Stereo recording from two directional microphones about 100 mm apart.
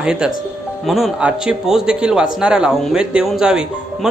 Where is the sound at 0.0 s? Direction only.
10° right (ahead or behind).